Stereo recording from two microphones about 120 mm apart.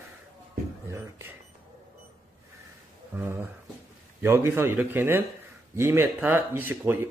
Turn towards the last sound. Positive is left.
turn(degrees=-15)  # may be behind; listen again after turning